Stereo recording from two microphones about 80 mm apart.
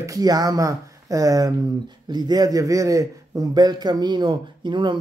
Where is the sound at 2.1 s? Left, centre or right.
Right.